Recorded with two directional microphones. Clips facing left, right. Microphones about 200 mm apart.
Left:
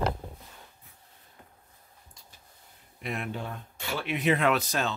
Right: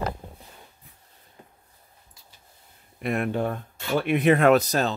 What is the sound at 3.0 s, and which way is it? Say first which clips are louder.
Speech: right 9 dB; 55° right (ahead or behind).